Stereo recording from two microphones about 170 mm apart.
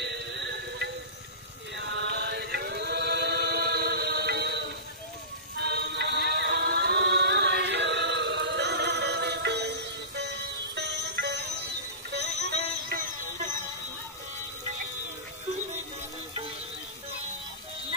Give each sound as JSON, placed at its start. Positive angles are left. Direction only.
{"t": 0.0, "sound": "music", "side_deg": -90}
{"t": 1.8, "sound": "chant", "side_deg": -90}
{"t": 5.6, "sound": "music", "side_deg": -70}
{"t": 12.1, "sound": "music", "side_deg": -80}